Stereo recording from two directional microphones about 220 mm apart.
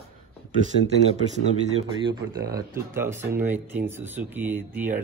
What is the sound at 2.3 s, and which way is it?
Speech, 15° right (ahead or behind).